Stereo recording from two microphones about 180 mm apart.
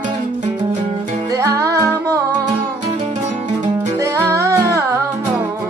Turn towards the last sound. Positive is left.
turn(degrees=-20)  # may be behind; listen again after turning